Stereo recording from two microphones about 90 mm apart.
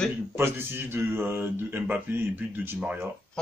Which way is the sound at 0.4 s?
25° right (ahead or behind).